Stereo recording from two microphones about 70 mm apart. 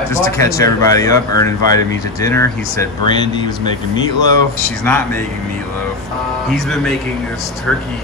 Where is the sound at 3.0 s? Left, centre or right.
Left.